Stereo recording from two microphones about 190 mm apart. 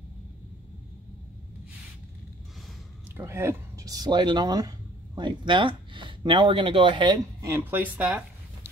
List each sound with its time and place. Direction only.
3.2 s speech: 15° right (ahead or behind)